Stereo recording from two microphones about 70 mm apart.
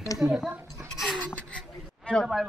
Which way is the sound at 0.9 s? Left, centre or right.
Centre.